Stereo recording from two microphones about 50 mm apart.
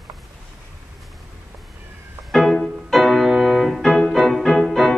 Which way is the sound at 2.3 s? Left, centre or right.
Centre.